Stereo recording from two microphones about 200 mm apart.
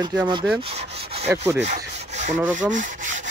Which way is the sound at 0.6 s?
30° right (ahead or behind).